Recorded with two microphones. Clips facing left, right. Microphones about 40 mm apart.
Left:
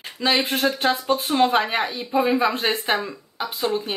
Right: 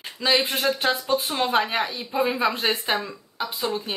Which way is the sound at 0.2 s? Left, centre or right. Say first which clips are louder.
Left 2 dB; centre.